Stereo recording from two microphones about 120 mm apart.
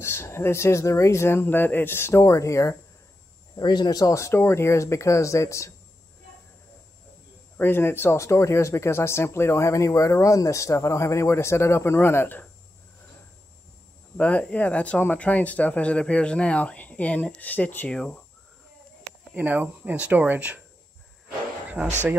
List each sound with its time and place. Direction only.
0.0 s speech: 20° left (ahead or behind)
3.5 s speech: 35° left (ahead or behind)
7.5 s speech: 20° left (ahead or behind)
14.1 s speech: 10° left (ahead or behind)
19.3 s speech: 15° right (ahead or behind)
21.6 s a sound: 15° right (ahead or behind)